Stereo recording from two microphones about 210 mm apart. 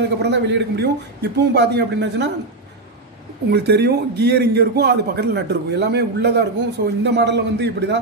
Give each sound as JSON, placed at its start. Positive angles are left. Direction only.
{"t": 0.2, "sound": "a man's voice", "side_deg": -55}
{"t": 3.4, "sound": "a man's voice", "side_deg": -50}